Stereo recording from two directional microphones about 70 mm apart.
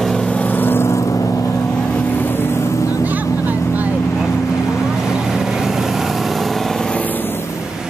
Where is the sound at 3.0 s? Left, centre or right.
Right.